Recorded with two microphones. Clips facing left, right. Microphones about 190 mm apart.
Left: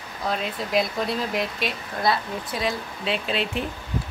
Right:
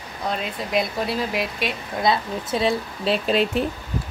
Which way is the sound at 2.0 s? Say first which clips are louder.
Right 2 dB; 25° right (ahead or behind).